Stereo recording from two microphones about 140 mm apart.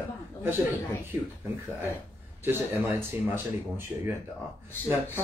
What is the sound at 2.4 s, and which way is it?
Speech, 15° right (ahead or behind).